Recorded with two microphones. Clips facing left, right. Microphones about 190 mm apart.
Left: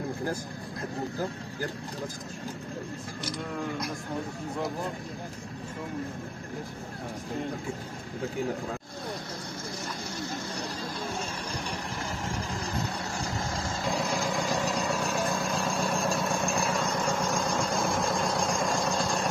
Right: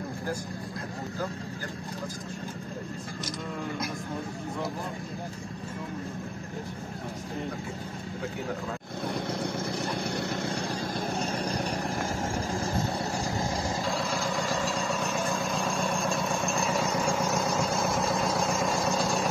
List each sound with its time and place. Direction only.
10.0 s vehicle: 60° right (ahead or behind)
11.2 s vehicle: 40° right (ahead or behind)
13.1 s vehicle: 20° right (ahead or behind)
13.8 s vehicle: 15° left (ahead or behind); by 19.2 s 5° right (ahead or behind)